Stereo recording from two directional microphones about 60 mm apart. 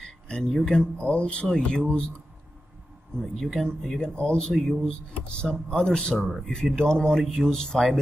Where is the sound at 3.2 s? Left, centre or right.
Centre.